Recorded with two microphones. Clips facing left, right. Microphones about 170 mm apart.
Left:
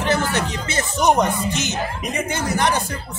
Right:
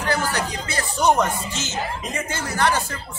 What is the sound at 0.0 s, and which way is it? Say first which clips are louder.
Music: left 3 dB; 25° left (ahead or behind).